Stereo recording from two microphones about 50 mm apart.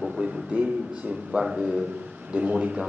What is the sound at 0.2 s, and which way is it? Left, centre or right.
Speech, right.